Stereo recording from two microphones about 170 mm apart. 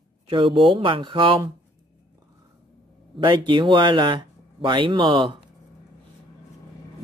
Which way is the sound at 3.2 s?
30° right (ahead or behind).